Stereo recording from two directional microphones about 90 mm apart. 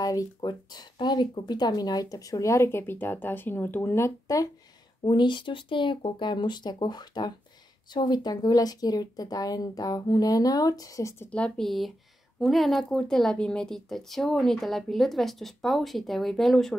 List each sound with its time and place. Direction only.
0.0 s speech: 40° left (ahead or behind)
0.4 s speech: 50° left (ahead or behind); by 4.5 s 35° left (ahead or behind)
5.0 s speech: 55° left (ahead or behind); by 11.2 s 35° left (ahead or behind)
11.2 s speech: 15° left (ahead or behind)
11.6 s a woman's voice: centre (ahead or behind)